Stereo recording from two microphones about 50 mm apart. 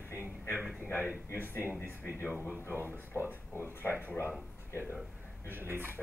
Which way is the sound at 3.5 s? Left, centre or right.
Left.